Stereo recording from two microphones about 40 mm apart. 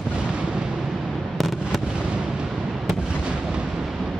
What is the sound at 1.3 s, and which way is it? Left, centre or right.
Fireworks, centre.